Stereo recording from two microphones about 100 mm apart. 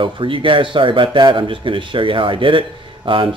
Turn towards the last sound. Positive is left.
turn(degrees=-60)  # may be behind; listen again after turning